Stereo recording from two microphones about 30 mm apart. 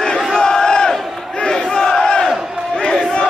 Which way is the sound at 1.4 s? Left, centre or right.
Left.